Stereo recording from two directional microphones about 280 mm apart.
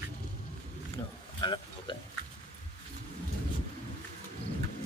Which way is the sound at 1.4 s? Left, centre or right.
Centre.